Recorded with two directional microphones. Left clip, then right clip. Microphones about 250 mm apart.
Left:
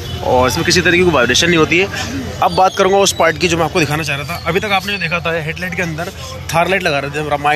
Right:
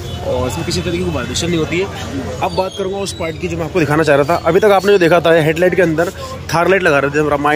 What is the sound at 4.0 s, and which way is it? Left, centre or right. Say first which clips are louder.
Speech: right 9 dB; right.